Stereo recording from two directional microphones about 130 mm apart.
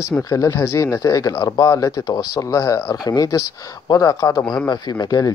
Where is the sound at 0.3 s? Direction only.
25° left (ahead or behind).